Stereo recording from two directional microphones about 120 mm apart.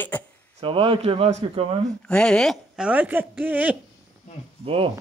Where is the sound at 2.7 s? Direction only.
10° right (ahead or behind).